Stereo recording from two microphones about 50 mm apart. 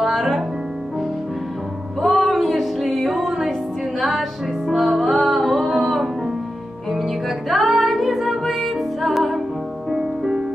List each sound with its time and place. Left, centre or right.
0.0 s music: centre
2.0 s music: centre